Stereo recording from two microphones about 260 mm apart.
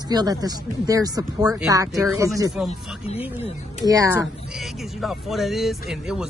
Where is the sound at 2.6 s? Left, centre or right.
Left.